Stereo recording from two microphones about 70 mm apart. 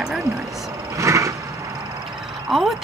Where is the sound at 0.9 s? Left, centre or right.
Right.